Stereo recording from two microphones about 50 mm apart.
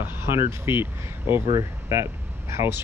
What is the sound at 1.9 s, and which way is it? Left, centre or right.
Air conditioning, right.